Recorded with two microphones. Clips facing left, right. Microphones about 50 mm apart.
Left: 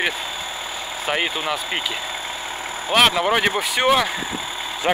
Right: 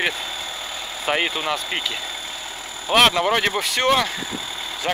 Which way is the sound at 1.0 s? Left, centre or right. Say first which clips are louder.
Right 1 dB; centre.